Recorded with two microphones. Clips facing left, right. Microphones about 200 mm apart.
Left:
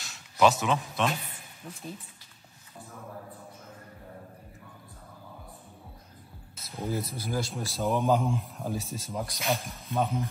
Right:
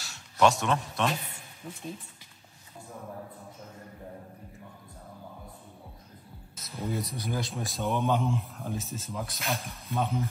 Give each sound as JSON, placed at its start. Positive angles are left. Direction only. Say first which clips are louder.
{"t": 0.0, "sound": "speech", "louder": "left 1 dB", "side_deg": 0}
{"t": 6.5, "sound": "music", "louder": "left 1 dB", "side_deg": 30}
{"t": 7.1, "sound": "speech", "louder": "left 1 dB", "side_deg": 0}